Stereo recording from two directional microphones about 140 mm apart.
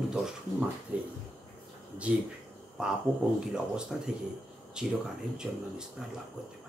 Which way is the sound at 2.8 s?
5° right (ahead or behind).